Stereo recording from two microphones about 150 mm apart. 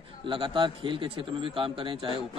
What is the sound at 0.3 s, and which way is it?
A man's voice, 35° right (ahead or behind).